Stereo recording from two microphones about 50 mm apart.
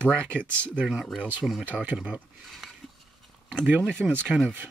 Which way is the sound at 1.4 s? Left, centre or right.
Centre.